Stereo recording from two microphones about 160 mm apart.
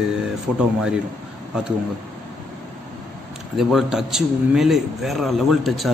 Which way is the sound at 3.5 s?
Centre (ahead or behind).